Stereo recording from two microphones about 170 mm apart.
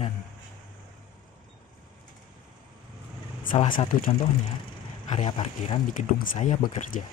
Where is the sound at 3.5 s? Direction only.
40° left (ahead or behind).